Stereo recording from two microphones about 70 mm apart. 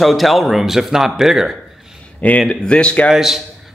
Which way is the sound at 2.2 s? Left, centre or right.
Centre.